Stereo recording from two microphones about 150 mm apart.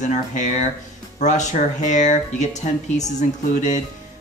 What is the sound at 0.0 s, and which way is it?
Speech, 55° left (ahead or behind).